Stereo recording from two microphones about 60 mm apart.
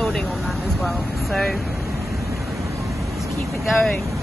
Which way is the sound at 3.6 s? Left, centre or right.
Centre.